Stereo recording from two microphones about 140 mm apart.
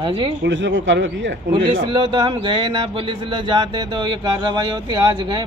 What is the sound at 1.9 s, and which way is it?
A man's voice, 35° right (ahead or behind).